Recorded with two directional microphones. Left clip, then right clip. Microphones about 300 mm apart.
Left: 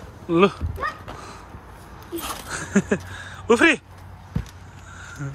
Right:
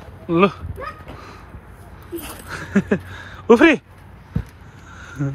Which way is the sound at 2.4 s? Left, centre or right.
Centre.